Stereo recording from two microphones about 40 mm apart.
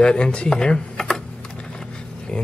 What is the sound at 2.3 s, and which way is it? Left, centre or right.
Speech, left.